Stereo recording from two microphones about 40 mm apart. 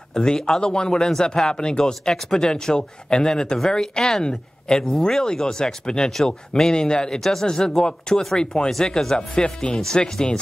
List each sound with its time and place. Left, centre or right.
0.1 s speech: centre
7.2 s speech: centre
9.3 s speech: left